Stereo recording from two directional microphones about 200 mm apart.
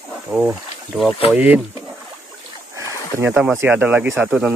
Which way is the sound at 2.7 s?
15° right (ahead or behind).